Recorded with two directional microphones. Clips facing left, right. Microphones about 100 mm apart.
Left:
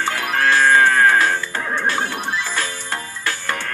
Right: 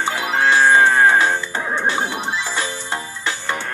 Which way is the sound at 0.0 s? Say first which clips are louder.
Right 1 dB; 20° right (ahead or behind).